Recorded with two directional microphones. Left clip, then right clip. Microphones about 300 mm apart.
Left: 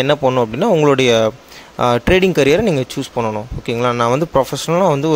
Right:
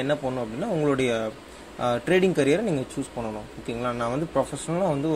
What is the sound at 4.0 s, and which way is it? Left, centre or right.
Speech, left.